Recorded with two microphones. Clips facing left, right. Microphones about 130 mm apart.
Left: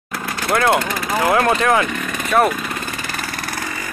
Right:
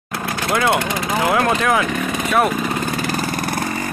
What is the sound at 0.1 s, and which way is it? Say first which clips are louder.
Vehicle: right 2 dB; 20° right (ahead or behind).